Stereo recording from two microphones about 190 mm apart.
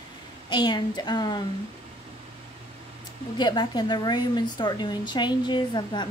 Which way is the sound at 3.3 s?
20° left (ahead or behind).